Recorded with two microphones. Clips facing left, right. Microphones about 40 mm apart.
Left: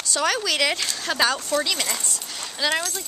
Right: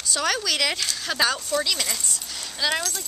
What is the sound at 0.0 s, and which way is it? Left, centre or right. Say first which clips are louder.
Speech: left 2 dB; centre.